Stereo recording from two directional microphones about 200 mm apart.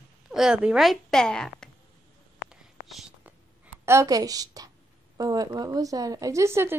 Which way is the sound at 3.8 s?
15° right (ahead or behind).